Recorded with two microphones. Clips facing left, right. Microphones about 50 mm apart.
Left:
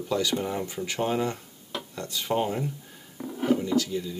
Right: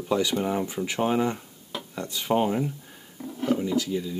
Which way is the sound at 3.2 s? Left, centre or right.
Centre.